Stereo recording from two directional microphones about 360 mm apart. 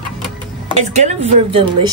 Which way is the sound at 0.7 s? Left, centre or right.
Centre.